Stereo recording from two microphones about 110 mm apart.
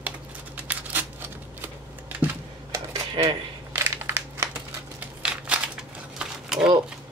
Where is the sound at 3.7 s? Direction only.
25° right (ahead or behind).